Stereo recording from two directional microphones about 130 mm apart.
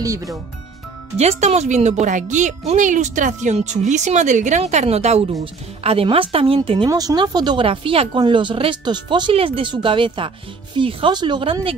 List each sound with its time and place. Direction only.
0.0 s speech: 25° right (ahead or behind)
1.1 s speech: 55° right (ahead or behind)
6.9 s speech: 30° right (ahead or behind)